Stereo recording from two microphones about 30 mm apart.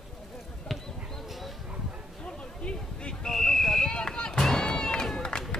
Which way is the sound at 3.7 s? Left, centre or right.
Left.